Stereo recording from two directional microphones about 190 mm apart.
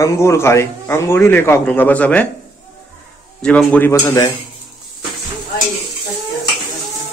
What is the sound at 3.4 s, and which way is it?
Speech, 5° left (ahead or behind).